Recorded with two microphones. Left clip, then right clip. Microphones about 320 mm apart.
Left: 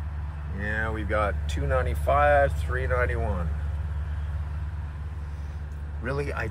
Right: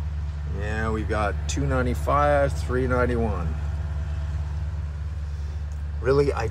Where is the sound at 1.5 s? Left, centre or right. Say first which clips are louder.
Right 1 dB; centre.